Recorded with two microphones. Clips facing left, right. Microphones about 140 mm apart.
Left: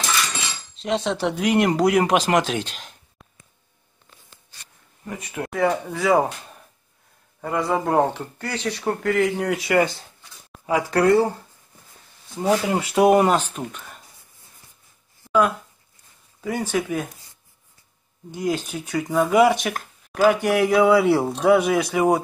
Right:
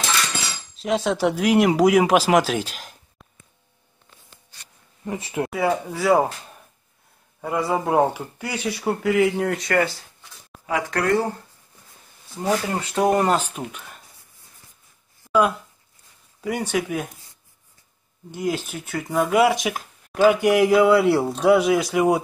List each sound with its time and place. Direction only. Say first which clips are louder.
0.7 s speech: right 2 dB; 5° right (ahead or behind)
5.0 s speech: right 4 dB; 25° right (ahead or behind)
5.5 s speech: left 3 dB; 5° right (ahead or behind)
7.4 s speech: even; 10° right (ahead or behind)
9.8 s speech: left 2 dB; 20° left (ahead or behind)
12.4 s speech: left 3 dB; 10° left (ahead or behind)
13.4 s speech: even; 10° right (ahead or behind)
15.2 s a sound: even; 5° right (ahead or behind)
16.7 s speech: left 1 dB; 5° right (ahead or behind)
18.3 s speech: left 1 dB; 10° right (ahead or behind)
20.1 s a sound: right 1 dB; 5° left (ahead or behind)
20.3 s speech: right 2 dB; 10° right (ahead or behind)